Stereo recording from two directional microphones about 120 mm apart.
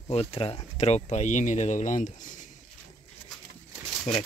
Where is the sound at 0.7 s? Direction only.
65° left (ahead or behind).